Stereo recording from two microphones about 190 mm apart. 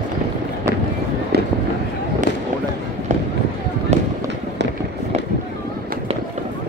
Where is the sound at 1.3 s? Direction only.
60° right (ahead or behind).